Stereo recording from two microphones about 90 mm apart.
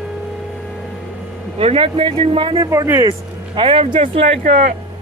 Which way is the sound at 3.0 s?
60° right (ahead or behind).